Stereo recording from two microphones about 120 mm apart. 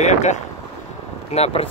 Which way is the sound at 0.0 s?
75° left (ahead or behind).